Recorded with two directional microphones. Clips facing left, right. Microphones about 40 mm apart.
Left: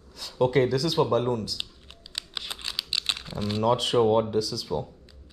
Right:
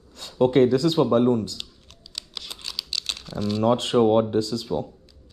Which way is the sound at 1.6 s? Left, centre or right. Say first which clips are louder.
Left 2 dB; left.